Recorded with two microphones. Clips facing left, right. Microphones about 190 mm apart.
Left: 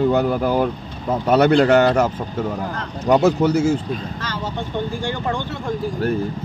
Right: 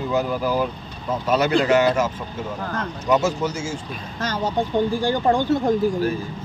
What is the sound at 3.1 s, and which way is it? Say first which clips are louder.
Speech: left 6 dB; 60° left (ahead or behind).